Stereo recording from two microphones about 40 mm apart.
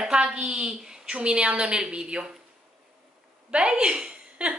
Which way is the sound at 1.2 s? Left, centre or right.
Right.